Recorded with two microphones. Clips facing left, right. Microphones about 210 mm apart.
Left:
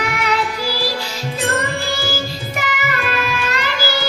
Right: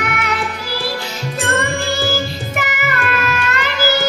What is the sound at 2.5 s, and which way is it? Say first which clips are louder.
Music: right 1 dB; 50° right (ahead or behind).